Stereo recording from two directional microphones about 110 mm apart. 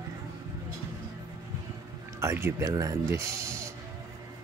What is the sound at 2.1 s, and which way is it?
Speech, 25° right (ahead or behind).